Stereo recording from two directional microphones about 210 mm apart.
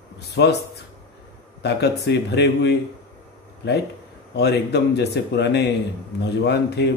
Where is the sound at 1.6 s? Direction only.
50° left (ahead or behind).